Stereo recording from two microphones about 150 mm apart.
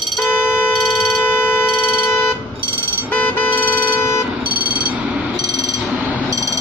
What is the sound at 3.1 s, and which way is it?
Vehicle, 10° left (ahead or behind).